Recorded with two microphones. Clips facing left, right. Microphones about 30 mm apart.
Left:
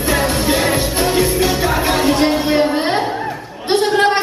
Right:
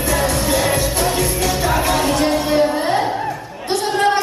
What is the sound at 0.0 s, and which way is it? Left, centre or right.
Music, left.